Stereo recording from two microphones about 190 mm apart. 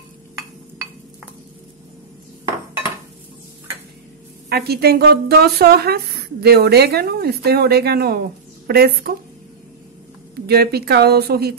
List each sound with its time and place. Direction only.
4.5 s a woman's voice: 55° right (ahead or behind)
10.3 s a woman's voice: 55° right (ahead or behind)